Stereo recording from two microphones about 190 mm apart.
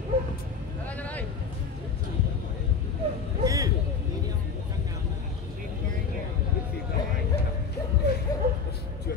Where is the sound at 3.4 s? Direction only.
20° right (ahead or behind).